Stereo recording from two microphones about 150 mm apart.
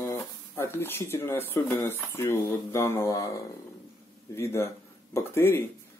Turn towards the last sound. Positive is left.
turn(degrees=15)  # may be behind; listen again after turning